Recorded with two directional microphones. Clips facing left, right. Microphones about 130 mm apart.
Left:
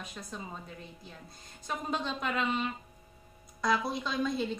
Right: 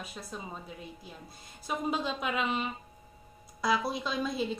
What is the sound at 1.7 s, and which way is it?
A woman's voice, 5° right (ahead or behind).